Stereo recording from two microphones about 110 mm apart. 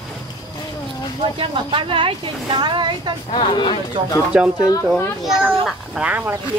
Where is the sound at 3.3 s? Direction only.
45° left (ahead or behind).